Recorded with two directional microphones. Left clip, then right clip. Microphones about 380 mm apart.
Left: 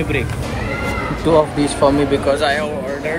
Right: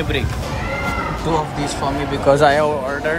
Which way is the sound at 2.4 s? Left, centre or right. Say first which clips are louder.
Right 4 dB; centre.